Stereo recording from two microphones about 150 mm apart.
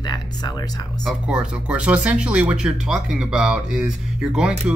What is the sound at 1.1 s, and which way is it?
Speech, 5° right (ahead or behind).